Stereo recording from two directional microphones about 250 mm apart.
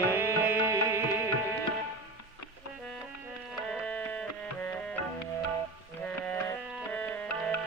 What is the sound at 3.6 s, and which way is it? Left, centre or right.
Music, centre.